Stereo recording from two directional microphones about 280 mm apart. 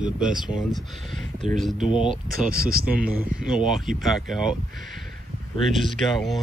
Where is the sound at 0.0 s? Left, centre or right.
Centre.